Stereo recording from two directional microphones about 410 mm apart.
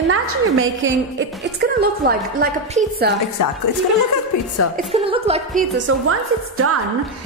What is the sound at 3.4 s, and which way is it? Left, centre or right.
A woman's voice, left.